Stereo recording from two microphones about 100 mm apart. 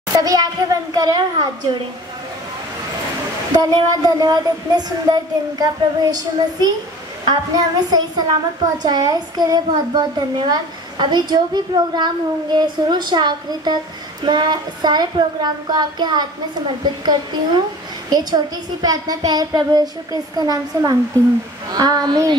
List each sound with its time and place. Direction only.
0.2 s a child's voice: 40° right (ahead or behind)
3.5 s a child's voice: 45° right (ahead or behind)